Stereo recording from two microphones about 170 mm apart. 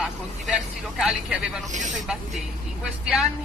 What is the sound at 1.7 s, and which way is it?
Speech, 45° right (ahead or behind).